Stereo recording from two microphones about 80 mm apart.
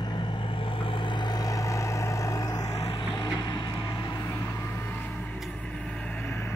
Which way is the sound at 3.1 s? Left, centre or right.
Left.